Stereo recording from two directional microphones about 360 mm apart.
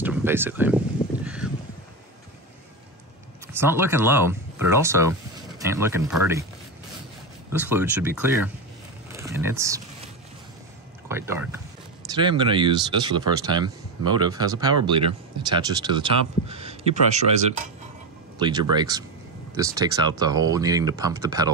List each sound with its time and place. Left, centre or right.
0.0 s speech: centre
1.2 s a sound: centre
3.5 s speech: centre
7.5 s speech: centre
9.1 s a sound: centre
11.1 s speech: centre